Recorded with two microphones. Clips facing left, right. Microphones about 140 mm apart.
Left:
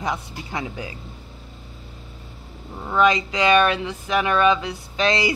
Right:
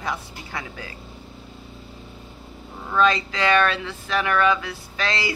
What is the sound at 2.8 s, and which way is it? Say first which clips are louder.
A man's voice: left 2 dB; 15° left (ahead or behind).